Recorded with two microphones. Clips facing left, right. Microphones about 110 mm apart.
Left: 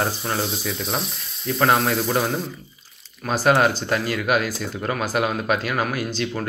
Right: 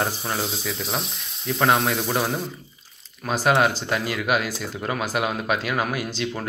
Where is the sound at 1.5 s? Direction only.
15° right (ahead or behind).